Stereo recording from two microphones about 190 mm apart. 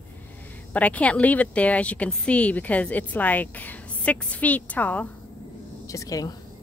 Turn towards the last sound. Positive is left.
turn(degrees=20)  # may be behind; listen again after turning